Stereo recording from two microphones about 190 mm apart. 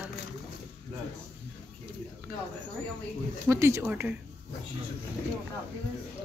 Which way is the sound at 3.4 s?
15° right (ahead or behind).